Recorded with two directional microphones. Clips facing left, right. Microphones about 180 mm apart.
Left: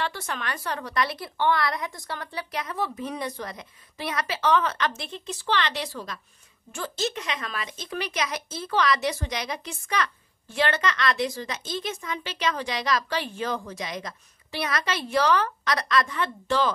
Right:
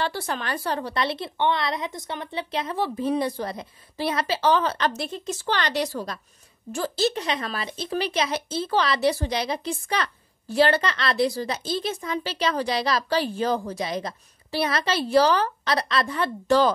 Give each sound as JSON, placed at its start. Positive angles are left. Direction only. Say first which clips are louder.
{"t": 0.0, "sound": "speech", "louder": "right 3 dB", "side_deg": -35}